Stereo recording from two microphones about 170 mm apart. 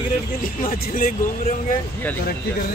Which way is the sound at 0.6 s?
55° left (ahead or behind).